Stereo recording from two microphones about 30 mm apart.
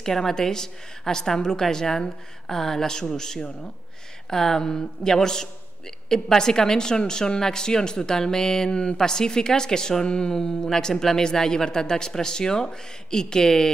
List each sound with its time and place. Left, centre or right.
0.0 s speech: centre